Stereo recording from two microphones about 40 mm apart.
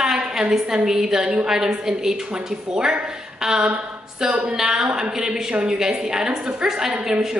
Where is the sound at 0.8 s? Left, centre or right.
Centre.